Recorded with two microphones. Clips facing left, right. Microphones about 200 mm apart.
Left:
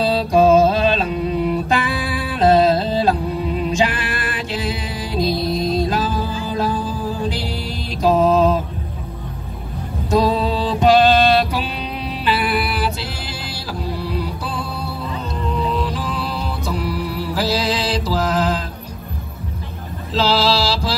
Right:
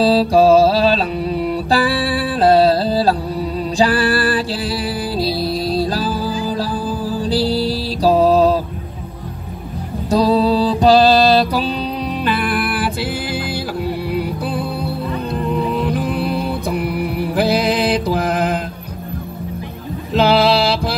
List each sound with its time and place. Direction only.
0.0 s music: 30° right (ahead or behind)
10.0 s music: 35° right (ahead or behind)
12.3 s music: 50° right (ahead or behind)
14.1 s music: 55° right (ahead or behind)
20.2 s a sound: 60° right (ahead or behind)